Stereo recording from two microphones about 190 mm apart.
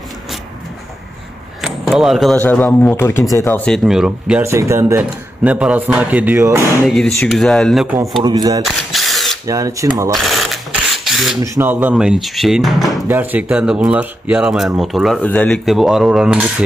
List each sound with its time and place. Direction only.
1.6 s speech: centre (ahead or behind)
4.4 s speech: 15° right (ahead or behind)
6.9 s speech: 5° left (ahead or behind)
8.2 s speech: 20° right (ahead or behind)
8.6 s camera: centre (ahead or behind)
9.5 s speech: 15° right (ahead or behind)
10.1 s sewing machine: centre (ahead or behind)
11.1 s a sound: centre (ahead or behind)
11.4 s speech: 15° right (ahead or behind)